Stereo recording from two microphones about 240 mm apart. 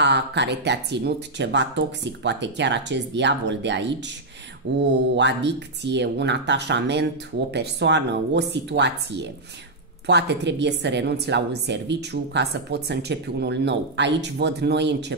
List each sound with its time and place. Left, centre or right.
0.0 s a woman's voice: right